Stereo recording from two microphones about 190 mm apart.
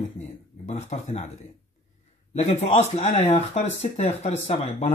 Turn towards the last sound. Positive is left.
turn(degrees=35)  # may be behind; listen again after turning